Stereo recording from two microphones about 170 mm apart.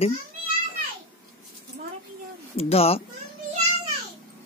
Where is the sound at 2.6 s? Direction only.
35° left (ahead or behind).